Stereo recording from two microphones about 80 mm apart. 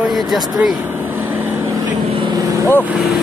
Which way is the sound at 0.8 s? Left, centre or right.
Right.